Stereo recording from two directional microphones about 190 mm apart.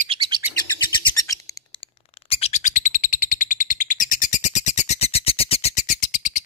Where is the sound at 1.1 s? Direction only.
15° left (ahead or behind).